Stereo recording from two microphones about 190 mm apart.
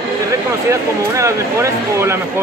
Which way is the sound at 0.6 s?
15° right (ahead or behind).